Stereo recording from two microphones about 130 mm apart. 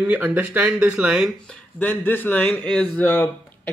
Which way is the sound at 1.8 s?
15° left (ahead or behind).